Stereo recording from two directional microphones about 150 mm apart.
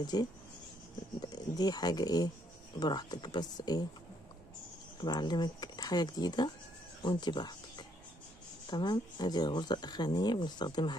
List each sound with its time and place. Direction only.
0.0 s speech: 25° left (ahead or behind)
5.0 s speech: 30° left (ahead or behind)